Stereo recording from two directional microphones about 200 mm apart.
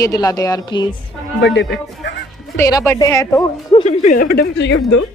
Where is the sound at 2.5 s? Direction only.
15° left (ahead or behind).